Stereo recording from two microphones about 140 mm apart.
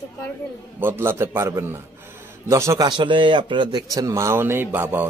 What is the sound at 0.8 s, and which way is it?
A man's voice, 15° right (ahead or behind).